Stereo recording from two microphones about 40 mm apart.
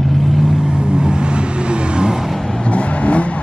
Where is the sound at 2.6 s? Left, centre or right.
Left.